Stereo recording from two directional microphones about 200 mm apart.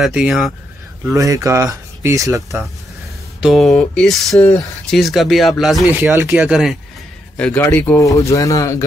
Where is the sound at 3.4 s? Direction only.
Centre (ahead or behind).